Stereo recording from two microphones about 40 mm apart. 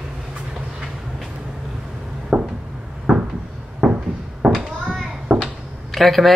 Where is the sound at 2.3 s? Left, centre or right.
Right.